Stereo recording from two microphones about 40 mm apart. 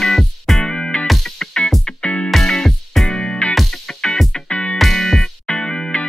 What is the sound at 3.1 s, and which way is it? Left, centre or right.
Music, centre.